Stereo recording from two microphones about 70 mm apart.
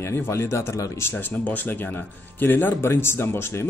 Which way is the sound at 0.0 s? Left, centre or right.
Left.